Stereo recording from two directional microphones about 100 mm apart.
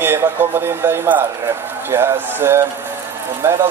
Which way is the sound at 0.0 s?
25° right (ahead or behind).